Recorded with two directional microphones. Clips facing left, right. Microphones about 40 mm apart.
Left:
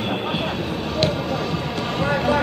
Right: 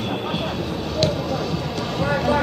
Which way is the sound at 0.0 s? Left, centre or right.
Centre.